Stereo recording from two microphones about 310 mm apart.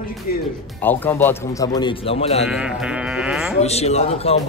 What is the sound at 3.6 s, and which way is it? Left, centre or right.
Speech, centre.